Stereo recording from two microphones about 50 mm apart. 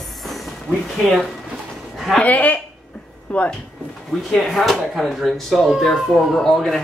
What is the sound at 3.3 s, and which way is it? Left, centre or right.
Speech, left.